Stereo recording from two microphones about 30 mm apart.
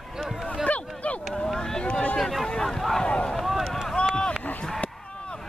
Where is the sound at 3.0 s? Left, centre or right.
Left.